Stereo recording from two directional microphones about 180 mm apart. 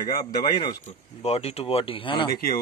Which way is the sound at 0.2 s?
25° left (ahead or behind).